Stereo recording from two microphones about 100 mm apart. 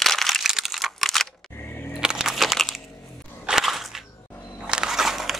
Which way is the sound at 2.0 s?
5° right (ahead or behind).